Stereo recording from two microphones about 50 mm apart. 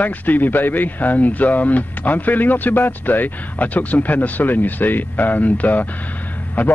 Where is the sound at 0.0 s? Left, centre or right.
Left.